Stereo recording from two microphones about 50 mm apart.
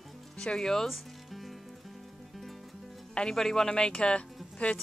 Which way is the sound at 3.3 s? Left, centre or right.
Centre.